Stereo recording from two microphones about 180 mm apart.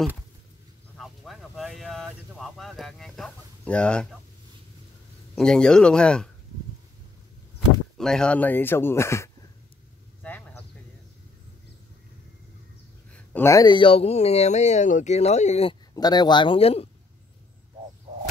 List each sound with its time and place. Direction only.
0.9 s a sound: centre (ahead or behind)
5.3 s speech: 5° left (ahead or behind)
8.0 s speech: 5° left (ahead or behind)
10.2 s a sound: 10° left (ahead or behind)
13.1 s speech: 10° left (ahead or behind); by 15.7 s 40° left (ahead or behind)
15.9 s speech: 20° left (ahead or behind)